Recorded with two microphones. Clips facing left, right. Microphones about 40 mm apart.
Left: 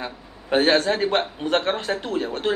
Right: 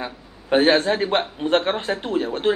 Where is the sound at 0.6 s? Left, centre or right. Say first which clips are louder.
Right 1 dB; right.